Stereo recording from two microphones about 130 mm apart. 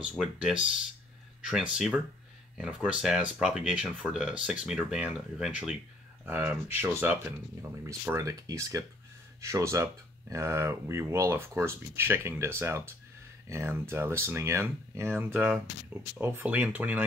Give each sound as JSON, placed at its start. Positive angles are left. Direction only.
{"t": 0.2, "sound": "speech", "side_deg": -5}
{"t": 15.3, "sound": "speech", "side_deg": -5}